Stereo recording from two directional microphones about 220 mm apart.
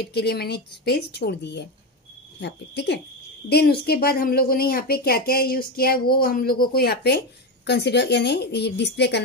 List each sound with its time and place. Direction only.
0.0 s speech: 45° left (ahead or behind)